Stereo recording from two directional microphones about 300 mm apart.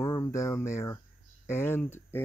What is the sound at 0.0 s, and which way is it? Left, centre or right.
Speech, centre.